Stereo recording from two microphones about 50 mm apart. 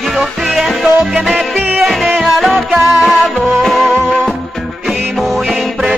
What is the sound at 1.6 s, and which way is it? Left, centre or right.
Music, right.